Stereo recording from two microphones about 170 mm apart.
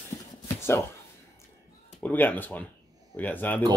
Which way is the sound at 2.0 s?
10° left (ahead or behind).